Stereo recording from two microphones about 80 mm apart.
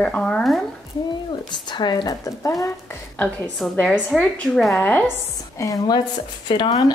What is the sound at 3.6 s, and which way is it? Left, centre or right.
Speech, centre.